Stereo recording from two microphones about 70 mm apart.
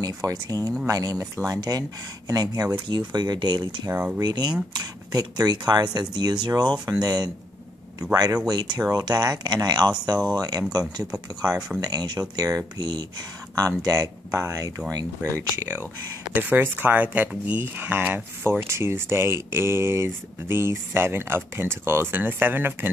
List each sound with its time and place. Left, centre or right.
0.0 s speech: right
4.2 s speech: right
6.4 s speech: right
8.5 s speech: right
13.6 s speech: right
16.3 s speech: right